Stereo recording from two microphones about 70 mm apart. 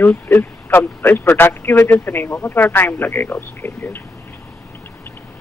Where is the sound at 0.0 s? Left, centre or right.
Left.